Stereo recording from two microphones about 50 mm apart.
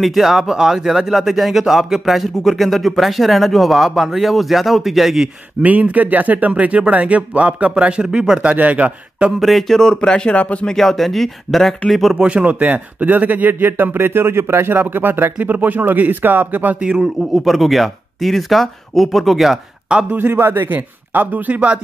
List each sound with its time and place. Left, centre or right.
0.0 s speech: centre
5.6 s speech: right
8.5 s speech: right
9.4 s speech: centre
10.3 s speech: left
10.7 s speech: centre
12.2 s speech: right
14.7 s speech: right
15.3 s speech: right
16.8 s a man's voice: centre
17.3 s speech: centre
20.2 s speech: right